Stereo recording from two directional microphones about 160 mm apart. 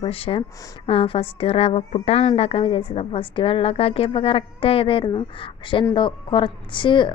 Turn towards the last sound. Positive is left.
turn(degrees=30)  # may be behind; listen again after turning